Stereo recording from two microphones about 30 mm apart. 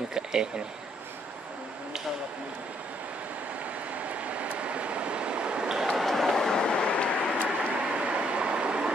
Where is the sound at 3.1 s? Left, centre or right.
Right.